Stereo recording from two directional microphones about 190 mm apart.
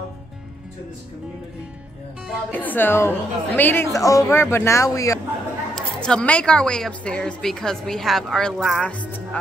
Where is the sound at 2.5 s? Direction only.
10° left (ahead or behind).